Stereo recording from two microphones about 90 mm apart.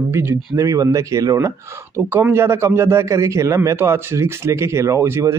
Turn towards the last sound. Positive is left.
turn(degrees=-30)  # may be behind; listen again after turning